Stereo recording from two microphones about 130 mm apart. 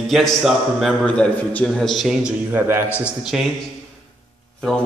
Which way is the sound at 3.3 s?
5° right (ahead or behind).